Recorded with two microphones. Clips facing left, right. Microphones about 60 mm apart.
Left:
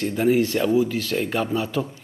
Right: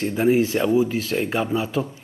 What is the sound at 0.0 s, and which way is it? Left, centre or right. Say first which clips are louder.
Speech: right 1 dB; centre.